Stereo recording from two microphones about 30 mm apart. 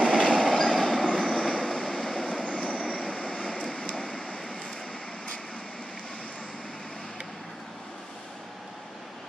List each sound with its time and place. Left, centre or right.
0.0 s train: right
0.7 s train: left
1.2 s vehicle: left